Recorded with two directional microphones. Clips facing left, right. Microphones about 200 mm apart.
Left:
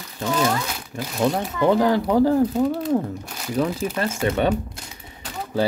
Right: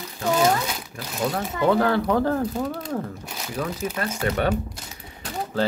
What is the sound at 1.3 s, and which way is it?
Speech, 20° left (ahead or behind).